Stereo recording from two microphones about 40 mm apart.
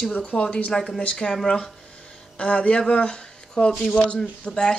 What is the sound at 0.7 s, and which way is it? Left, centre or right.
Speech, centre.